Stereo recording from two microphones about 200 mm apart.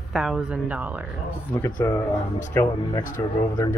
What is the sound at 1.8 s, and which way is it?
Speech, 15° left (ahead or behind).